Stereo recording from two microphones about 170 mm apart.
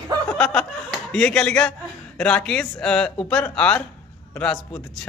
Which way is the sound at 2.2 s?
5° left (ahead or behind).